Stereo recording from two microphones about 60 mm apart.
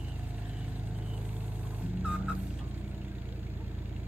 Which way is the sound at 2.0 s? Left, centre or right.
Centre.